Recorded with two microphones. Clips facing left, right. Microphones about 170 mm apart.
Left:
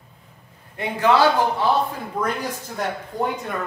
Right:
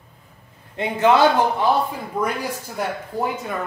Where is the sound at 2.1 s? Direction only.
10° right (ahead or behind).